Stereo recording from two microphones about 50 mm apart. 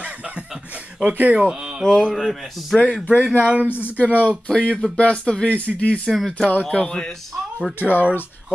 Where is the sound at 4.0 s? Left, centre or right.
Left.